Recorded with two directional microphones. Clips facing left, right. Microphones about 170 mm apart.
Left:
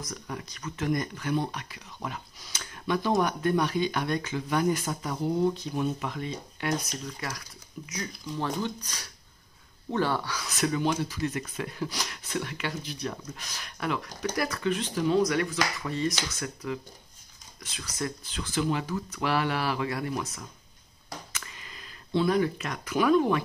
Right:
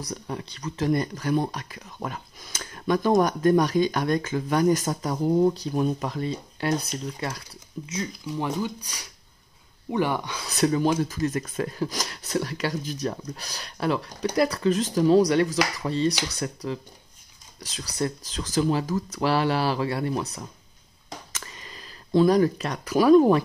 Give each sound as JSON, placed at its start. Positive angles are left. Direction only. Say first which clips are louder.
{"t": 0.0, "sound": "speech", "louder": "right 4 dB", "side_deg": -30}
{"t": 8.3, "sound": "speech", "louder": "right 2 dB", "side_deg": -10}
{"t": 10.4, "sound": "speech", "louder": "right 7 dB", "side_deg": -35}
{"t": 21.3, "sound": "a sound", "louder": "right 3 dB", "side_deg": -35}